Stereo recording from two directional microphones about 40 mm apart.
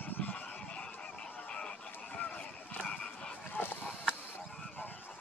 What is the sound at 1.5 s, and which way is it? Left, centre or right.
Music, left.